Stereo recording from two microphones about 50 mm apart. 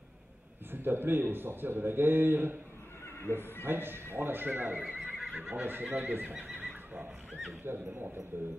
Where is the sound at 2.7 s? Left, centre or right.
Left.